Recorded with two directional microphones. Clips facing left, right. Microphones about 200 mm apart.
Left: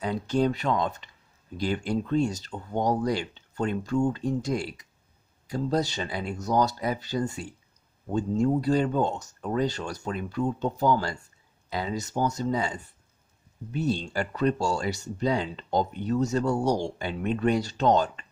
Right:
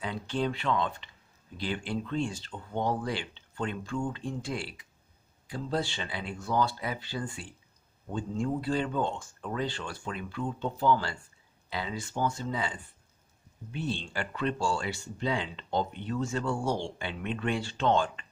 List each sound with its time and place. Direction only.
0.0 s speech: 40° left (ahead or behind)